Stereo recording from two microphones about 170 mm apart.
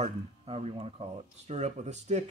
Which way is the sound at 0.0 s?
35° right (ahead or behind).